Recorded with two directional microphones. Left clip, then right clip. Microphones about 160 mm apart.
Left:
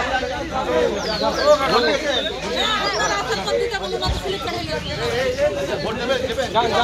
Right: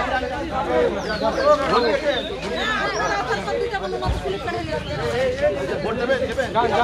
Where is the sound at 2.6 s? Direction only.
20° left (ahead or behind).